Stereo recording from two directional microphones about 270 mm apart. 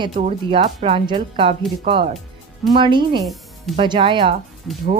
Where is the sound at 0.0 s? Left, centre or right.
Centre.